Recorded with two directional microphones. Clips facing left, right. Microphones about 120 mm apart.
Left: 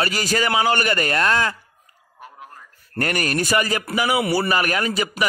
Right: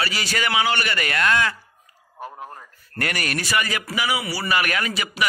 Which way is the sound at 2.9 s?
40° left (ahead or behind).